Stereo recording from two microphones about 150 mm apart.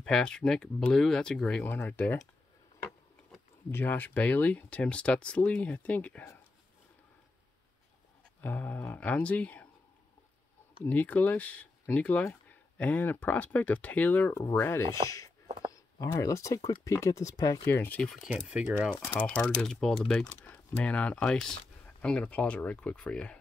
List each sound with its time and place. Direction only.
0.0 s speech: 5° left (ahead or behind)
3.7 s speech: 15° left (ahead or behind)
8.4 s speech: 10° left (ahead or behind)
10.8 s speech: 10° left (ahead or behind)
18.0 s speech: centre (ahead or behind)
18.9 s speech: 15° left (ahead or behind)